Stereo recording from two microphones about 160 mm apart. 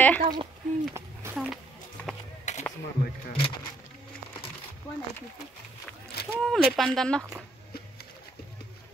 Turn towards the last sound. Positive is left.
turn(degrees=5)  # may be behind; listen again after turning